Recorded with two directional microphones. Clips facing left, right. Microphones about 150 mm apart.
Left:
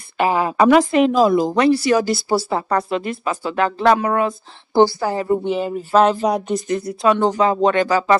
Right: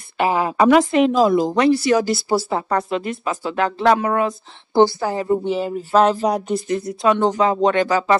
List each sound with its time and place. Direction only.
0.2 s a woman's voice: 20° right (ahead or behind)
5.4 s speech: 35° right (ahead or behind)
6.7 s a woman's voice: 20° right (ahead or behind)